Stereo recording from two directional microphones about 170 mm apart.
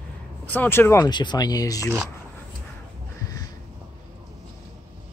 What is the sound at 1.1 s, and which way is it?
Speech, 25° left (ahead or behind).